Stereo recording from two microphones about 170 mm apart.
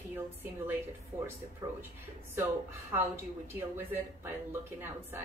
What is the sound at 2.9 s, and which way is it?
A woman's voice, 15° right (ahead or behind).